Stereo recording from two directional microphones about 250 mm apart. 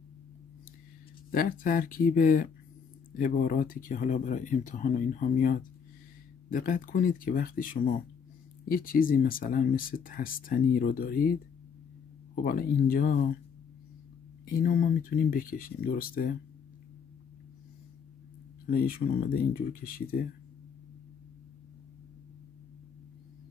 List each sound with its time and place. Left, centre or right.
1.3 s speech: left
12.4 s speech: left
14.4 s speech: left
18.7 s speech: left